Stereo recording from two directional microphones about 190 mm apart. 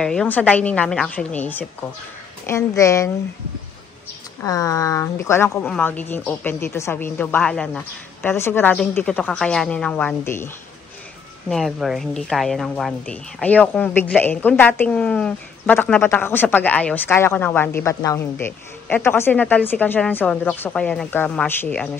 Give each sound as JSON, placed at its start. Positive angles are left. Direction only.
{"t": 0.0, "sound": "a woman's voice", "side_deg": 5}
{"t": 4.4, "sound": "a woman's voice", "side_deg": 20}
{"t": 11.4, "sound": "a woman's voice", "side_deg": 0}